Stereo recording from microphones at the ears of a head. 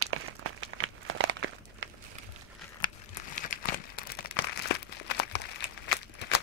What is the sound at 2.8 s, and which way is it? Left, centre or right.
Crumpling, left.